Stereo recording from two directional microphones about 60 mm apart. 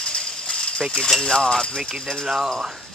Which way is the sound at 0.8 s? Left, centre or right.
Centre.